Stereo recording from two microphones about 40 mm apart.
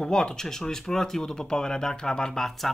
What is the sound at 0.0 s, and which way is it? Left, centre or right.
Speech, centre.